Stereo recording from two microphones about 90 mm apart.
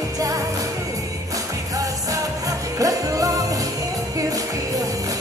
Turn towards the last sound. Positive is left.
turn(degrees=-40)  # may be behind; listen again after turning